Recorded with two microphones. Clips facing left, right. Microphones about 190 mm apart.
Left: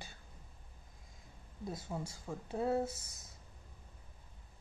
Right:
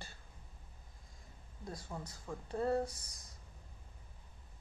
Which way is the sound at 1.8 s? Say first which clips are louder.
Left 3 dB; 5° left (ahead or behind).